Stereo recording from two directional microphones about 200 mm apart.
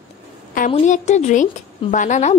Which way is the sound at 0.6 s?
35° left (ahead or behind).